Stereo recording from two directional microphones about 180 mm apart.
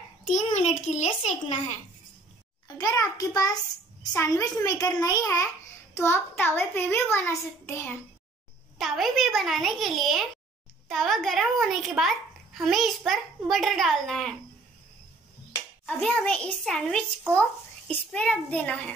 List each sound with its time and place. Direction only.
0.3 s a child's voice: 40° left (ahead or behind)
2.8 s a child's voice: 20° left (ahead or behind)
8.7 s a child's voice: centre (ahead or behind)
15.8 s a child's voice: 5° left (ahead or behind)